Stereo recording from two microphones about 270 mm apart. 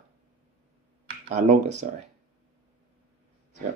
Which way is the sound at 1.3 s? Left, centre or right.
Right.